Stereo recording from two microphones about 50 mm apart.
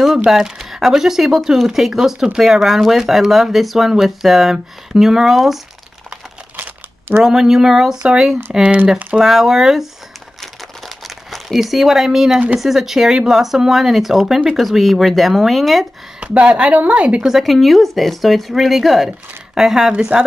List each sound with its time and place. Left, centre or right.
0.3 s speech: centre
6.5 s crumpling: right
7.2 s speech: centre
11.1 s a woman's voice: centre
16.2 s speech: right
17.3 s a woman's voice: centre